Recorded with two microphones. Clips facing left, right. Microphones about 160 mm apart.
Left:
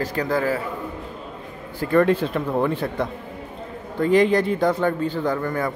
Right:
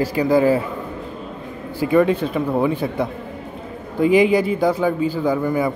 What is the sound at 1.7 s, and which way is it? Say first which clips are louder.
A man's voice: right 2 dB; 5° right (ahead or behind).